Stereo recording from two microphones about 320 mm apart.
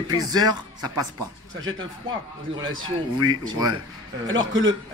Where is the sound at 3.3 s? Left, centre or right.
Centre.